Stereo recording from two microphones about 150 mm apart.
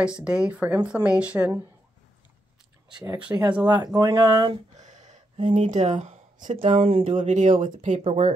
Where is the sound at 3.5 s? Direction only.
10° right (ahead or behind).